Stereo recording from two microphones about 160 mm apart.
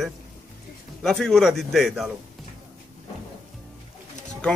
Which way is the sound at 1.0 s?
5° left (ahead or behind).